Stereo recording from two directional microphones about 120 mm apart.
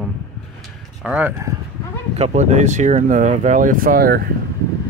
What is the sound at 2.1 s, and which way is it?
Speech, 70° right (ahead or behind).